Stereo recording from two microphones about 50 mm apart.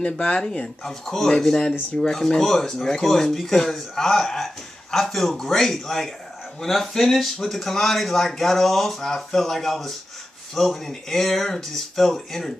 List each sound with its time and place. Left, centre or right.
0.0 s speech: left
1.0 s speech: centre